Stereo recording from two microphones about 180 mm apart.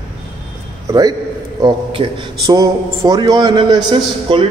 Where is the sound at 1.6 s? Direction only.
20° right (ahead or behind).